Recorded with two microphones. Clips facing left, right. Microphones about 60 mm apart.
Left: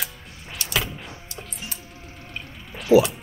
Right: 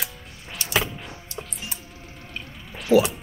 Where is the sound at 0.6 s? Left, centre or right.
Right.